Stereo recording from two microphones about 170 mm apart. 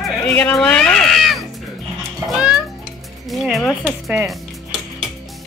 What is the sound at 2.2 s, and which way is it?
Music, 5° right (ahead or behind).